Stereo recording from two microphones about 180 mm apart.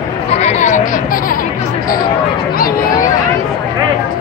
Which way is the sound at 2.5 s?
55° left (ahead or behind).